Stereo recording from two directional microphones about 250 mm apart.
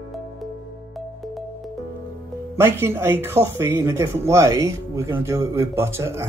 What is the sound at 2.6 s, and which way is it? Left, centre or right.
Speech, centre.